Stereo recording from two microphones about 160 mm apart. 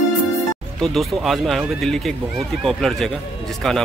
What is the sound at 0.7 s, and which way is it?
Speech, centre (ahead or behind).